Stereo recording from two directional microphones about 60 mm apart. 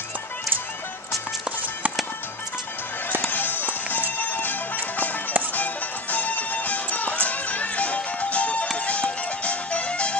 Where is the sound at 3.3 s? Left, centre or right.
Left.